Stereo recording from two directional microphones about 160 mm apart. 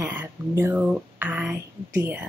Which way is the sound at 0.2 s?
10° right (ahead or behind).